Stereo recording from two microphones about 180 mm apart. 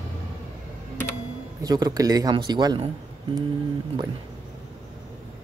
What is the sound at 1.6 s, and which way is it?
A man's voice, 20° right (ahead or behind).